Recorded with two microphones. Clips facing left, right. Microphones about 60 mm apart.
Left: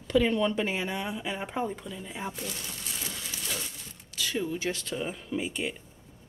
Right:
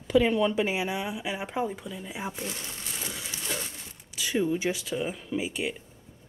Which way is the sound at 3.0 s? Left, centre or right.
Centre.